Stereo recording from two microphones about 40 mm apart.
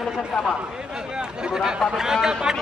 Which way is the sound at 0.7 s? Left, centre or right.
Centre.